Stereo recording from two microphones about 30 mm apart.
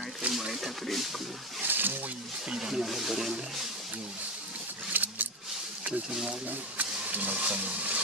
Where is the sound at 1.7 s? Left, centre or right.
Right.